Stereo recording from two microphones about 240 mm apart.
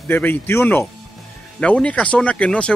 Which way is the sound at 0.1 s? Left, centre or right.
Centre.